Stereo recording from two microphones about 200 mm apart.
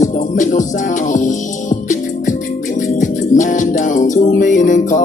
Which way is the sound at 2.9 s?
40° left (ahead or behind).